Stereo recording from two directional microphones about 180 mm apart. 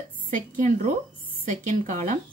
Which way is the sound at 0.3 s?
45° right (ahead or behind).